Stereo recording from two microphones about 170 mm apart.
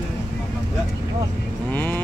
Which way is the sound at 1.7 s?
10° left (ahead or behind).